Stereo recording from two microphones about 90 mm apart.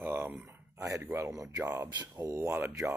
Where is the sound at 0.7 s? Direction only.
35° right (ahead or behind).